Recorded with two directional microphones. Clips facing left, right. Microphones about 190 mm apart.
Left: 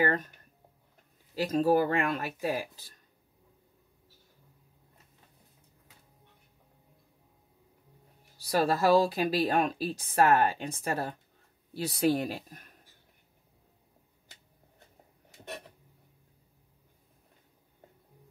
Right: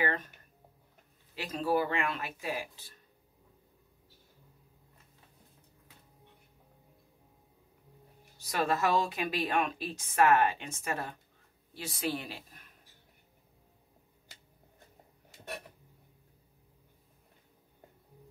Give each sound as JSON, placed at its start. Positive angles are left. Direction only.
{"t": 0.0, "sound": "speech", "side_deg": 40}
{"t": 1.3, "sound": "speech", "side_deg": 40}
{"t": 8.4, "sound": "speech", "side_deg": 35}